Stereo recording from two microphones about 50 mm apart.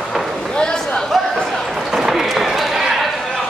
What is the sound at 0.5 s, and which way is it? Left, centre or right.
Chatter, centre.